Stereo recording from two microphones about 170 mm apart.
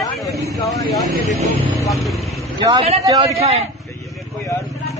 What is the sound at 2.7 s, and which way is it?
Speech, 35° right (ahead or behind).